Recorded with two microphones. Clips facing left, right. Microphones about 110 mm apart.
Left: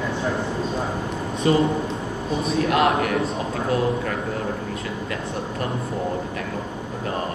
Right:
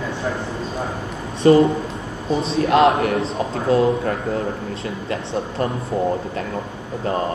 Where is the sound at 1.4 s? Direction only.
40° right (ahead or behind).